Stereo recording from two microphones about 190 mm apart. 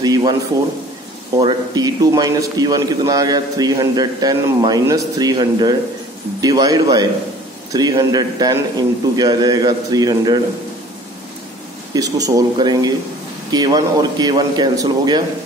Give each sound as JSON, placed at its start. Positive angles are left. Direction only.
{"t": 0.0, "sound": "a sound", "side_deg": -20}
{"t": 1.4, "sound": "a man's voice", "side_deg": -20}
{"t": 11.9, "sound": "a man's voice", "side_deg": -20}